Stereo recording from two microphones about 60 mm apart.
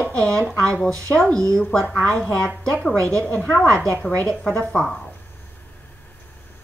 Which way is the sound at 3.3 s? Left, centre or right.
Left.